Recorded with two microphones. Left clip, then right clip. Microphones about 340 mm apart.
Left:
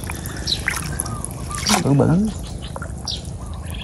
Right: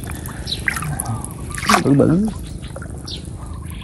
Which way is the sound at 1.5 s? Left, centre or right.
Centre.